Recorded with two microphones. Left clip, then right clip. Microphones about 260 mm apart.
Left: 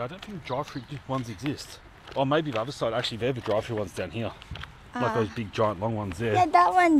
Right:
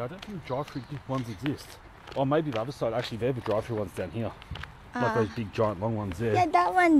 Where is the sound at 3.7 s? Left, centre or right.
Left.